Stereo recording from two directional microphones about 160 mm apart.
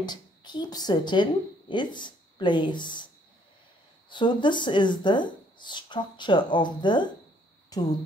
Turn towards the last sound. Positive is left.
turn(degrees=25)  # may be behind; listen again after turning